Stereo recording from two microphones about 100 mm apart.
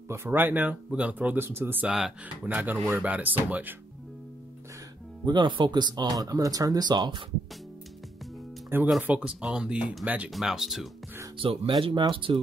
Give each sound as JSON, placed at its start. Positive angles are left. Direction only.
{"t": 0.1, "sound": "speech", "side_deg": -25}
{"t": 1.9, "sound": "speech", "side_deg": -5}
{"t": 2.4, "sound": "speech", "side_deg": -15}
{"t": 5.2, "sound": "speech", "side_deg": -50}
{"t": 8.6, "sound": "speech", "side_deg": -25}
{"t": 9.0, "sound": "speech", "side_deg": -15}
{"t": 10.3, "sound": "speech", "side_deg": -5}
{"t": 11.3, "sound": "speech", "side_deg": -65}